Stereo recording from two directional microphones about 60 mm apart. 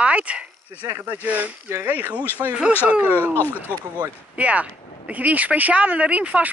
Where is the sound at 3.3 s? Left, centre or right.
Left.